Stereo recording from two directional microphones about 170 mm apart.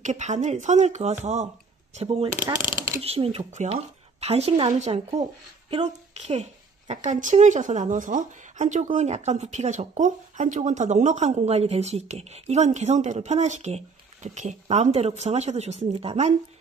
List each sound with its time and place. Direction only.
0.0 s speech: 45° right (ahead or behind)
2.7 s a sound: 15° right (ahead or behind)
3.0 s speech: 35° right (ahead or behind)